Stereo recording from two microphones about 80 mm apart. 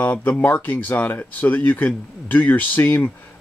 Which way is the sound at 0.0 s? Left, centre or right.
Left.